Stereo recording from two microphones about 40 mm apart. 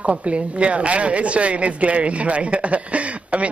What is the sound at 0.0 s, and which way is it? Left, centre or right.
Speech, right.